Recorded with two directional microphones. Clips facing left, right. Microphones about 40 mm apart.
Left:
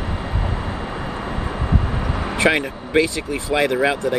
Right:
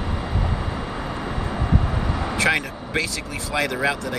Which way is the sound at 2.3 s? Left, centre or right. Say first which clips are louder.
Left 4 dB; left.